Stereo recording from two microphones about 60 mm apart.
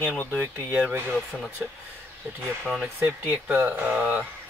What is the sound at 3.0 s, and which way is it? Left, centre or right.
Speech, right.